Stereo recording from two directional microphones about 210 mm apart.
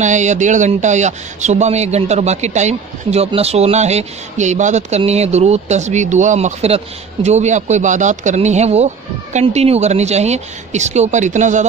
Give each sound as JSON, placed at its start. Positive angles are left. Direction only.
{"t": 0.0, "sound": "speech", "side_deg": -35}